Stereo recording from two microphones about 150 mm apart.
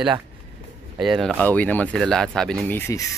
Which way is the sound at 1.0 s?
Centre (ahead or behind).